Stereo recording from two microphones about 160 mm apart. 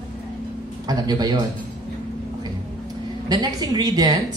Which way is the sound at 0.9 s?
25° right (ahead or behind).